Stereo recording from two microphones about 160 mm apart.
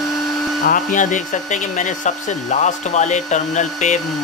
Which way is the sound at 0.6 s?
55° left (ahead or behind).